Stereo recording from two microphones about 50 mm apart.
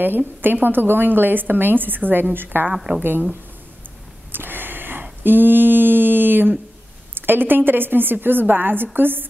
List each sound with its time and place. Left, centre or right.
0.4 s a woman's voice: right
2.7 s speech: centre
4.3 s a sound: right
5.2 s a woman's voice: right